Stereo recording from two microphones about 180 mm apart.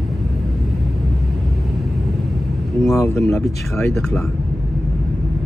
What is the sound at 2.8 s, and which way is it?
Speech, 15° left (ahead or behind).